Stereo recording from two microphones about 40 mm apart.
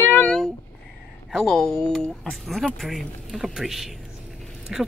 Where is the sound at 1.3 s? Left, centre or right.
Centre.